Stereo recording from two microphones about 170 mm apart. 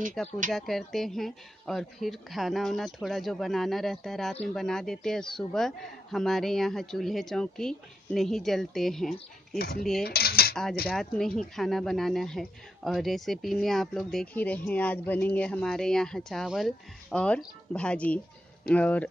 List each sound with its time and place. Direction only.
0.2 s speech: 5° left (ahead or behind)
10.0 s dishes: 65° left (ahead or behind)
10.5 s speech: 5° left (ahead or behind)